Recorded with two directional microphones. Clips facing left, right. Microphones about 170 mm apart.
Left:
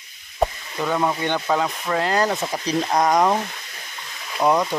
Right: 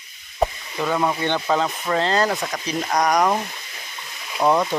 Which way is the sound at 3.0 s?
25° left (ahead or behind).